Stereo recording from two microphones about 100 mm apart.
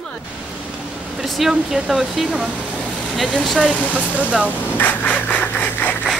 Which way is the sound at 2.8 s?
5° left (ahead or behind).